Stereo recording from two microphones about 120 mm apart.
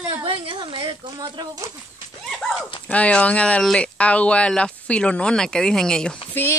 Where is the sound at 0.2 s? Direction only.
45° right (ahead or behind).